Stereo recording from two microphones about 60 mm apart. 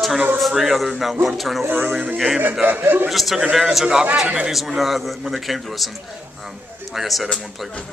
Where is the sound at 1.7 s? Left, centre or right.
Right.